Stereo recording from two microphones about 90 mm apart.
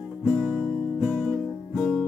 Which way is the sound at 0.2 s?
5° right (ahead or behind).